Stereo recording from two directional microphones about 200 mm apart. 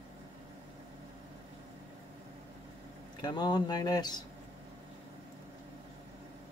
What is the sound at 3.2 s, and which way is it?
Speech, 20° left (ahead or behind).